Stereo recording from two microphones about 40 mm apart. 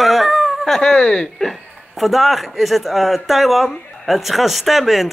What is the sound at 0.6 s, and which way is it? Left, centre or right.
Speech, centre.